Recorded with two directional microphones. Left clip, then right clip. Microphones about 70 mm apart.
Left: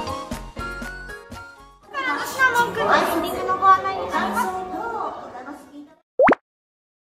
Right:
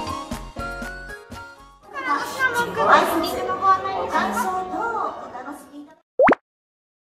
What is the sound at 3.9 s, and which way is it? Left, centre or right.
Children playing, centre.